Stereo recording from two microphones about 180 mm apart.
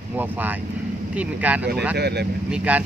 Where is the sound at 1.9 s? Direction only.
65° right (ahead or behind).